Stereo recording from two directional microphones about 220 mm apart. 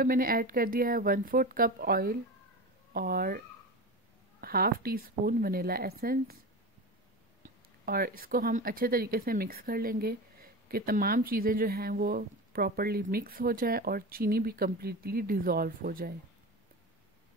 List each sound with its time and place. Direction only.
0.0 s speech: 40° right (ahead or behind)
7.4 s speech: 40° right (ahead or behind)